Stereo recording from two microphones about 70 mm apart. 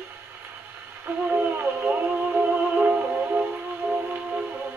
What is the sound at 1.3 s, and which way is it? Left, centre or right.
Music, right.